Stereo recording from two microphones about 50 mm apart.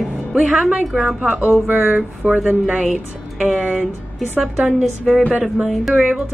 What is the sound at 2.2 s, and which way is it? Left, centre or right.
Speech, right.